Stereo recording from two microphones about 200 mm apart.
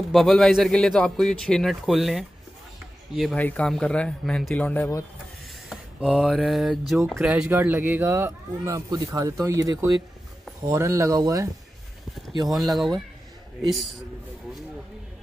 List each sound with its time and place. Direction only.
0.1 s a man's voice: centre (ahead or behind)
5.7 s a sound: 5° right (ahead or behind)
7.1 s speech: 5° right (ahead or behind)
12.4 s a man's voice: centre (ahead or behind)